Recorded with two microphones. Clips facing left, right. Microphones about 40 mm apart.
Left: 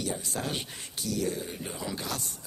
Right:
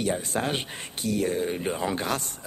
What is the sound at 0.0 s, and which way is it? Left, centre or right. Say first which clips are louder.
Speech: right 6 dB; right.